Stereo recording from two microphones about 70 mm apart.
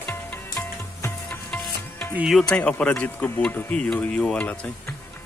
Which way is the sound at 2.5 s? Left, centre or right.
Centre.